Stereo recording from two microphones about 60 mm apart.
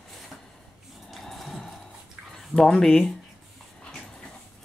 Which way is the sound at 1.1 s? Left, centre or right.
Centre.